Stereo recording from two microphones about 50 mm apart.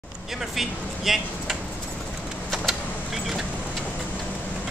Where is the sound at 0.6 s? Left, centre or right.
Centre.